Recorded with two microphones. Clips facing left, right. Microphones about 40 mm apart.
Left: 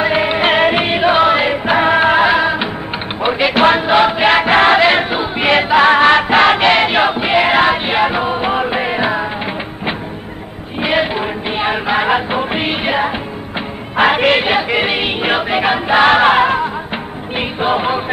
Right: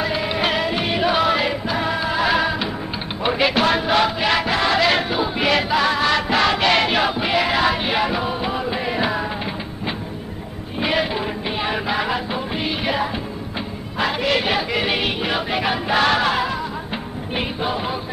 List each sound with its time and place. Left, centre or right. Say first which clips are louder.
0.0 s music: left 7 dB; left
1.7 s music: left 10 dB; left
2.2 s music: left 6 dB; left
3.5 s chant: left 6 dB; left
10.8 s music: left 5 dB; left
14.4 s choir: left 6 dB; left
17.4 s music: left 8 dB; left